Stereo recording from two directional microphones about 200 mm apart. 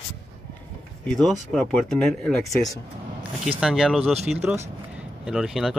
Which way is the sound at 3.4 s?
Centre (ahead or behind).